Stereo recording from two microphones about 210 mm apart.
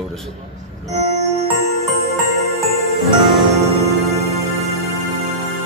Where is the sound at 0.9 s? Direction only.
30° right (ahead or behind).